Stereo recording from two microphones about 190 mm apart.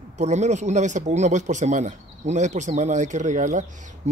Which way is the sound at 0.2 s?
35° right (ahead or behind).